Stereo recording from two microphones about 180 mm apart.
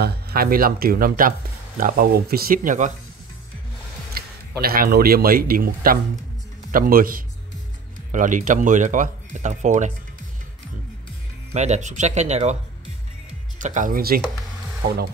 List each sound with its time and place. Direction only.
0.0 s speech: 60° right (ahead or behind)
4.1 s speech: 55° right (ahead or behind)
11.5 s speech: 40° right (ahead or behind)
13.6 s speech: 45° right (ahead or behind)